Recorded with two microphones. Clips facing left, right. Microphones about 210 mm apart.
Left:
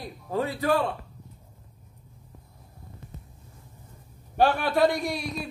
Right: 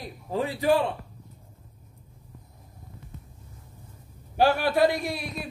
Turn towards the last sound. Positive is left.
turn(degrees=-5)  # may be behind; listen again after turning